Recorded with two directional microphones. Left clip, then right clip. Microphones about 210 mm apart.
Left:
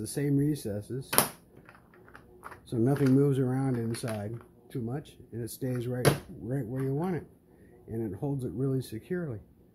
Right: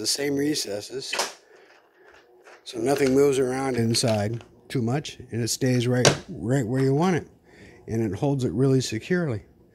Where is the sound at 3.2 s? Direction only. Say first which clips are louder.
Right 8 dB; 35° right (ahead or behind).